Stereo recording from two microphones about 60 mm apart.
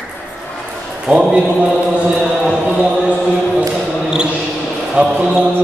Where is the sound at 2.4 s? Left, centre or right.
Centre.